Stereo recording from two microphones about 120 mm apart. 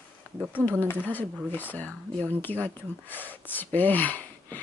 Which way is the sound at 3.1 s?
15° left (ahead or behind).